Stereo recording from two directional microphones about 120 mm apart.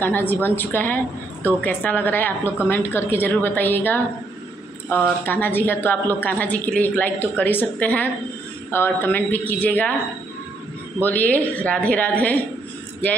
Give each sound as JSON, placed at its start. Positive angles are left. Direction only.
{"t": 0.0, "sound": "a woman's voice", "side_deg": 15}
{"t": 5.2, "sound": "a woman's voice", "side_deg": 15}
{"t": 11.0, "sound": "a woman's voice", "side_deg": 15}